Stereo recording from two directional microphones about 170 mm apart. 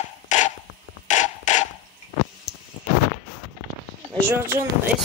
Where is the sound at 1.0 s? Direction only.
45° left (ahead or behind).